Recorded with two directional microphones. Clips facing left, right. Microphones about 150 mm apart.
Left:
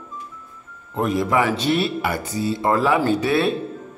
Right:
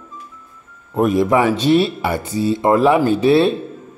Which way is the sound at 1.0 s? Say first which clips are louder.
Right 5 dB; 20° right (ahead or behind).